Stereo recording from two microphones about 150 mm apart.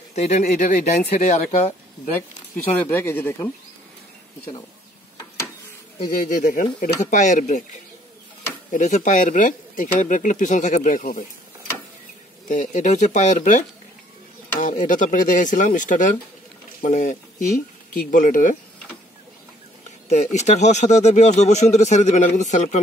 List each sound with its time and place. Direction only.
0.1 s a man's voice: 50° left (ahead or behind)
2.1 s speech: 15° left (ahead or behind)
6.0 s speech: 70° left (ahead or behind)
12.4 s a man's voice: 55° left (ahead or behind)
14.6 s speech: 55° left (ahead or behind)
20.3 s a man's voice: 50° left (ahead or behind)